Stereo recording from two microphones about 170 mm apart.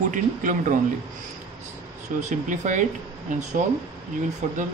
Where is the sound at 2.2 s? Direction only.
45° right (ahead or behind).